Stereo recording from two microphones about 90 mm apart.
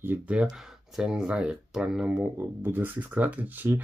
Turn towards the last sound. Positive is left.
turn(degrees=-20)  # may be behind; listen again after turning